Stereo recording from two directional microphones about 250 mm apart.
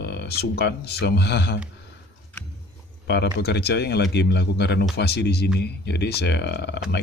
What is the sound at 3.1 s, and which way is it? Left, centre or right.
Speech, left.